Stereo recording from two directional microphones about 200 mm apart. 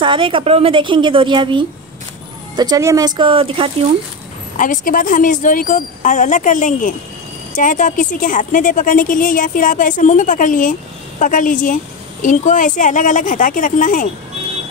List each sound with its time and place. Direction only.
0.0 s a woman's voice: 25° right (ahead or behind)
4.6 s a woman's voice: 40° left (ahead or behind)